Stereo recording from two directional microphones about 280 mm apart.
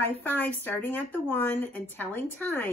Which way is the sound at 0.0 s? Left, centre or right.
Centre.